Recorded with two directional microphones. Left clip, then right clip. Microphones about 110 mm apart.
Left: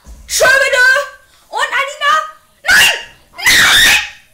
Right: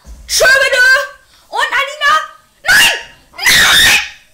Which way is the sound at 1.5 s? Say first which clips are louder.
Right 1 dB; 30° right (ahead or behind).